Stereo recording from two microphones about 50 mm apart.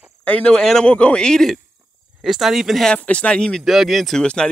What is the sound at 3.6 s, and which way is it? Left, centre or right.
Speech, centre.